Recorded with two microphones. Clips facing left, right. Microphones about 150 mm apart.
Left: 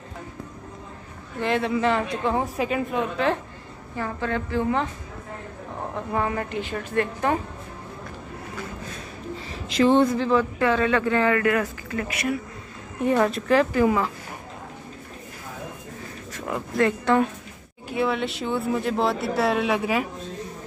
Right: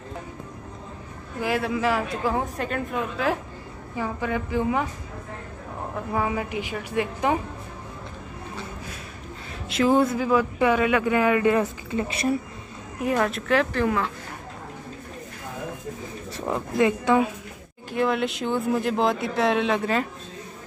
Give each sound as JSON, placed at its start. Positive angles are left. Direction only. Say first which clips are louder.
{"t": 1.4, "sound": "a woman's voice", "louder": "left 2 dB", "side_deg": -5}
{"t": 5.9, "sound": "a woman's voice", "louder": "even", "side_deg": -5}
{"t": 9.5, "sound": "a woman's voice", "louder": "left 2 dB", "side_deg": -5}
{"t": 13.0, "sound": "speech", "louder": "left 3 dB", "side_deg": 0}
{"t": 16.3, "sound": "a sound", "louder": "right 2 dB", "side_deg": -30}
{"t": 16.7, "sound": "a woman's voice", "louder": "even", "side_deg": -15}
{"t": 17.9, "sound": "speech", "louder": "right 1 dB", "side_deg": 0}